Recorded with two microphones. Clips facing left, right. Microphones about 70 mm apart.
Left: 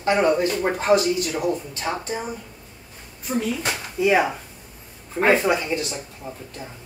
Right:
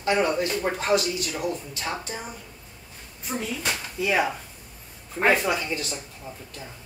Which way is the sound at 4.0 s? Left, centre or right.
Centre.